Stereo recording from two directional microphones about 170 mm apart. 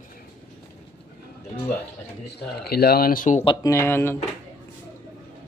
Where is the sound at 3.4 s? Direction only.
25° left (ahead or behind).